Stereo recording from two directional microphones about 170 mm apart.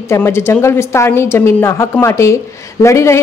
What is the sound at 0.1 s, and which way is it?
A woman's voice, 15° left (ahead or behind).